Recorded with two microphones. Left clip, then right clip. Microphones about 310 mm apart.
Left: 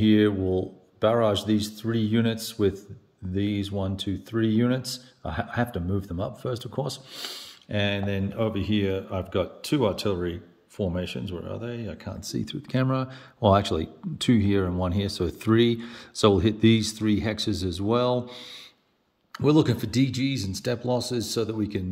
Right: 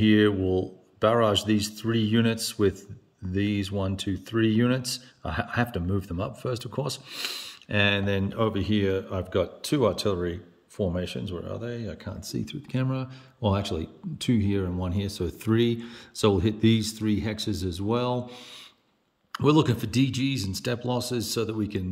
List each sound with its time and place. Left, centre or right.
0.0 s speech: centre